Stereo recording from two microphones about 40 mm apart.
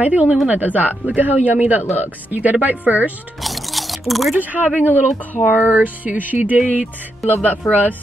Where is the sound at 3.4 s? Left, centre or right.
Centre.